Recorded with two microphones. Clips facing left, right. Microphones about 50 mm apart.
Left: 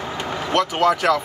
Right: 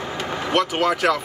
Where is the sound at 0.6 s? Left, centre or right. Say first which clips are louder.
Left 3 dB; centre.